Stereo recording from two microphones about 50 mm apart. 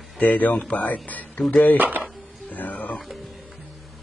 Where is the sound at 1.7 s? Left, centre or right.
Right.